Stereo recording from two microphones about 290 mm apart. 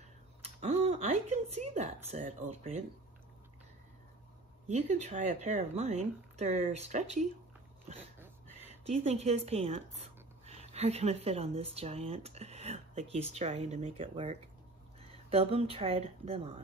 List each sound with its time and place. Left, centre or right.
0.6 s a woman's voice: right
4.6 s a woman's voice: right
8.8 s a woman's voice: right